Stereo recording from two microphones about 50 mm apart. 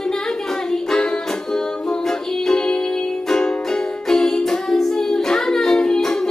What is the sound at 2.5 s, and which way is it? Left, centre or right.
Music, centre.